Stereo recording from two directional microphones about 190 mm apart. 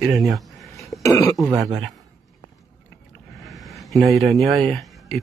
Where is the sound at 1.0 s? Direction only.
15° left (ahead or behind).